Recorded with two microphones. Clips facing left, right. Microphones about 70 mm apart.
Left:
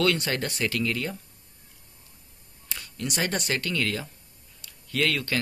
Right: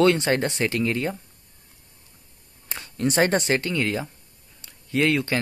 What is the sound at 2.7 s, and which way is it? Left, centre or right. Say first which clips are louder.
Speech: right 8 dB; right.